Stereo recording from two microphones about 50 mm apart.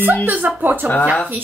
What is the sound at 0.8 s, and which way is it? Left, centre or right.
Speech, right.